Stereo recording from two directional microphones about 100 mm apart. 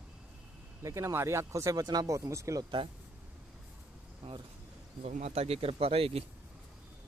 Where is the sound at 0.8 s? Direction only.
30° right (ahead or behind).